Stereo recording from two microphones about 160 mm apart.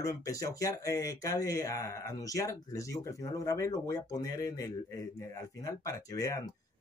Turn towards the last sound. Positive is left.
turn(degrees=20)  # may be behind; listen again after turning